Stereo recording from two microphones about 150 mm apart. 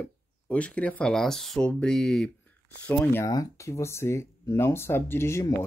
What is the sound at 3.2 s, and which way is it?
Speech, 20° left (ahead or behind).